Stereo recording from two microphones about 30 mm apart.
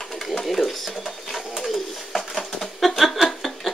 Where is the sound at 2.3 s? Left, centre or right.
Centre.